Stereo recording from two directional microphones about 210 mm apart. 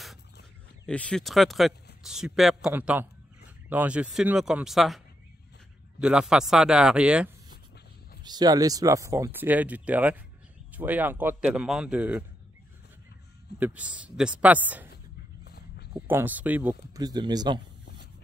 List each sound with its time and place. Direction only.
0.8 s speech: 5° left (ahead or behind)
8.2 s speech: 20° right (ahead or behind)
13.6 s speech: 5° right (ahead or behind)
15.4 s dog: 50° left (ahead or behind)
15.9 s speech: 10° right (ahead or behind)